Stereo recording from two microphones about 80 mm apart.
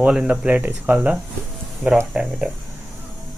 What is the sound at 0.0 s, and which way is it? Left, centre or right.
Speech, centre.